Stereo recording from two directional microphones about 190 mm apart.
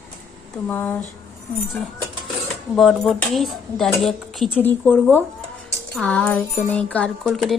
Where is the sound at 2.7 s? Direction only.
Centre (ahead or behind).